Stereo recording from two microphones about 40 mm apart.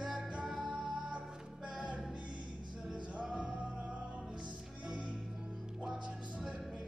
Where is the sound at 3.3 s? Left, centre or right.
Right.